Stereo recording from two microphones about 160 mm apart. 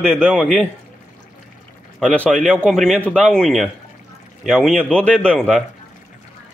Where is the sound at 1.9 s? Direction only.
5° left (ahead or behind).